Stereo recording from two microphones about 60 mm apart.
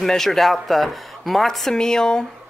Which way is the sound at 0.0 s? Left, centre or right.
Centre.